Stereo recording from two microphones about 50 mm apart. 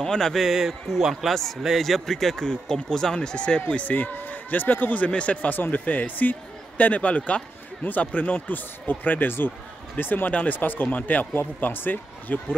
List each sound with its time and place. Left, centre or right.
0.0 s a man's voice: centre; by 11.2 s left
11.3 s speech: left